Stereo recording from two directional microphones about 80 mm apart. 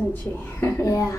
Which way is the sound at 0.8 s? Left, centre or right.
Left.